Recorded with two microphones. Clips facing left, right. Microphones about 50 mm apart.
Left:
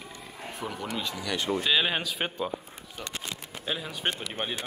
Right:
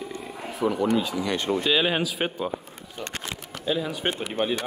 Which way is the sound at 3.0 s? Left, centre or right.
Right.